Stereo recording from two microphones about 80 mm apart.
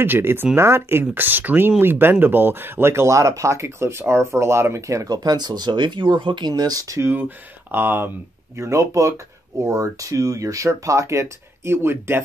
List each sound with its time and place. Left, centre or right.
0.0 s speech: right
5.1 s speech: right
7.0 s speech: right
8.5 s speech: right